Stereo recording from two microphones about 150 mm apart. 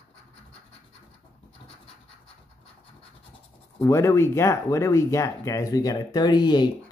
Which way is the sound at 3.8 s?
20° left (ahead or behind).